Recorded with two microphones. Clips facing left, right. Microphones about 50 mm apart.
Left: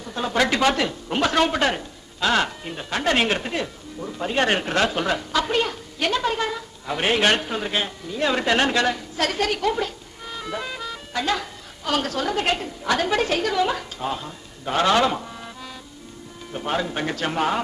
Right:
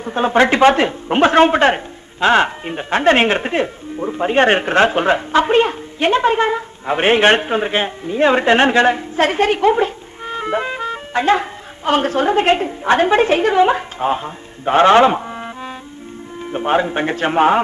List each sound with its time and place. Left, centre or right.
0.0 s a woman's voice: right